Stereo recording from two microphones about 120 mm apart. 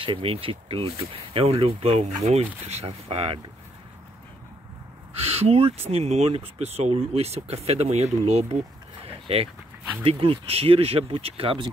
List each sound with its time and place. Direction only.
0.0 s speech: 50° right (ahead or behind)
5.1 s speech: 55° right (ahead or behind)
9.0 s a sound: 55° right (ahead or behind)
10.0 s speech: 50° right (ahead or behind)